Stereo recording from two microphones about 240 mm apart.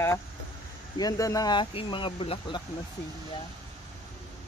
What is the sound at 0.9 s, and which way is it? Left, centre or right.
Speech, centre.